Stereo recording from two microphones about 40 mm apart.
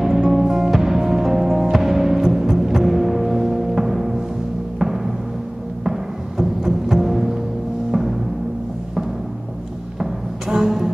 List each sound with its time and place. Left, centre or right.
0.0 s music: centre
10.5 s music: centre